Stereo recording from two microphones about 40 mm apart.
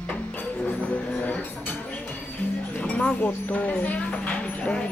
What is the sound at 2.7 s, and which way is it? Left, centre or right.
Speech, left.